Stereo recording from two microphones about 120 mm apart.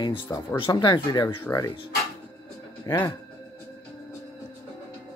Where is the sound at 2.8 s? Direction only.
25° left (ahead or behind).